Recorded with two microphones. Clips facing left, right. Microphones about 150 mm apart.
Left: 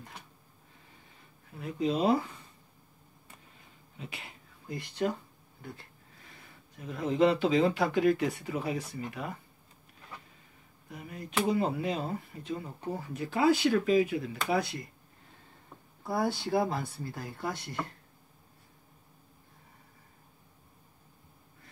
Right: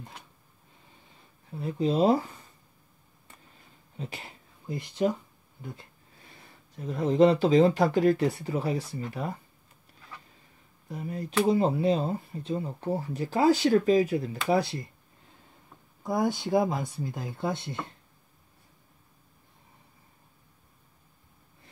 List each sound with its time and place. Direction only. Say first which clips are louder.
1.6 s speech: right 4 dB; 35° right (ahead or behind)
4.0 s speech: right 5 dB; 35° right (ahead or behind)
4.6 s speech: right 4 dB; 20° right (ahead or behind)
6.8 s speech: right 5 dB; 35° right (ahead or behind)
10.9 s speech: right 8 dB; 35° right (ahead or behind)
16.0 s speech: right 3 dB; 15° right (ahead or behind)